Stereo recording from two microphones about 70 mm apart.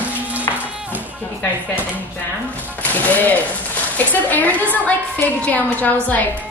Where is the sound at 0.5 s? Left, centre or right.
Left.